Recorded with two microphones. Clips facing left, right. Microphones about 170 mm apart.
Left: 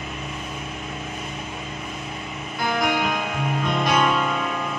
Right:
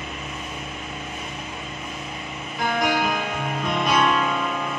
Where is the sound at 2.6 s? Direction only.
Centre (ahead or behind).